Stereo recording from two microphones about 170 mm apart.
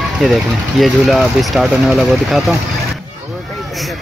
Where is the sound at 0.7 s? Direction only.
Centre (ahead or behind).